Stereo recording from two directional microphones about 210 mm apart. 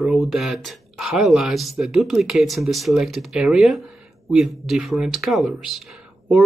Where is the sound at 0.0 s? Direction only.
Centre (ahead or behind).